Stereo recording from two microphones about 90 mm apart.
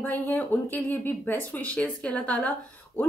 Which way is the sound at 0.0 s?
20° left (ahead or behind).